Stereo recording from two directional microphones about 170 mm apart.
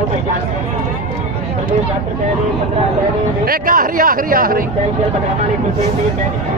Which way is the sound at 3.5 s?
55° right (ahead or behind).